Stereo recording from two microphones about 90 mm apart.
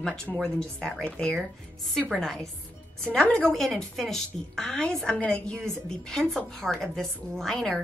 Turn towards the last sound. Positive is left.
turn(degrees=5)  # may be behind; listen again after turning